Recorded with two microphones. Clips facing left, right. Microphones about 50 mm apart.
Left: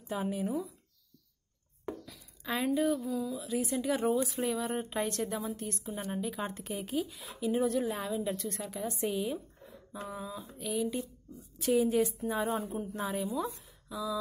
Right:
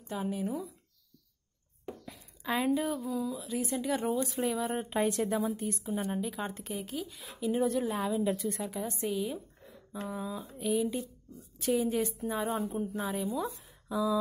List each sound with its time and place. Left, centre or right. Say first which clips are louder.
0.0 s speech: even; centre
2.4 s speech: even; centre
13.8 s a sound: right 6 dB; centre